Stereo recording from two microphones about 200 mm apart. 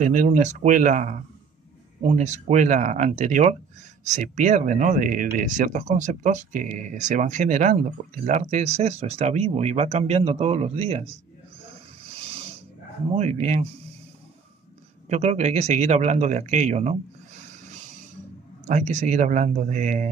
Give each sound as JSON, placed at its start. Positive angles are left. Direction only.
{"t": 0.0, "sound": "speech", "side_deg": -40}
{"t": 13.1, "sound": "speech", "side_deg": -30}
{"t": 15.0, "sound": "speech", "side_deg": -30}
{"t": 18.7, "sound": "speech", "side_deg": -35}